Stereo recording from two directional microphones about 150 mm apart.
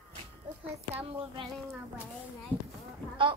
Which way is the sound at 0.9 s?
40° right (ahead or behind).